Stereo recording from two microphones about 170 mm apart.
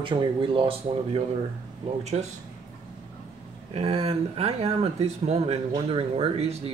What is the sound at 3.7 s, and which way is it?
Speech, 35° right (ahead or behind).